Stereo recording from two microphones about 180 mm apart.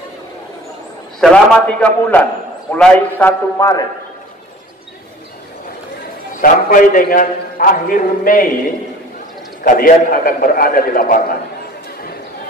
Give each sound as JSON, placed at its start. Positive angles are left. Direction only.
{"t": 1.2, "sound": "a man's voice", "side_deg": 5}
{"t": 6.4, "sound": "a man's voice", "side_deg": 45}
{"t": 9.6, "sound": "a man's voice", "side_deg": 50}